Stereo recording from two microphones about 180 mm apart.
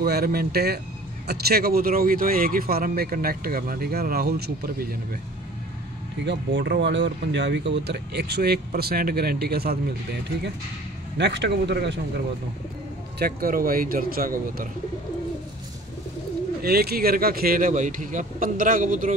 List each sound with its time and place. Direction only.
0.0 s speech: 60° right (ahead or behind)
6.2 s speech: 70° right (ahead or behind)
11.1 s speech: 70° right (ahead or behind)
13.2 s a man's voice: 55° right (ahead or behind)
16.6 s a man's voice: 60° right (ahead or behind)